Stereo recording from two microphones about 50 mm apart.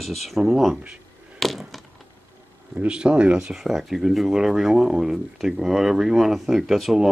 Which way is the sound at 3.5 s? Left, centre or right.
Centre.